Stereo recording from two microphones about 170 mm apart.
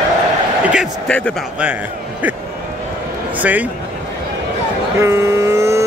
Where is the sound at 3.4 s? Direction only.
10° right (ahead or behind).